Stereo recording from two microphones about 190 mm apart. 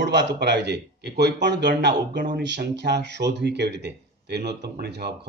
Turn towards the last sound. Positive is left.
turn(degrees=-60)  # may be behind; listen again after turning